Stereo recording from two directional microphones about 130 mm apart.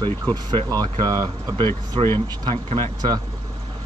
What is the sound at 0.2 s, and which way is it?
Speech, 35° right (ahead or behind).